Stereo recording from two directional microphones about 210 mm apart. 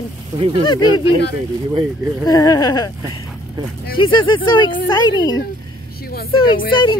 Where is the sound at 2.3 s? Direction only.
20° left (ahead or behind).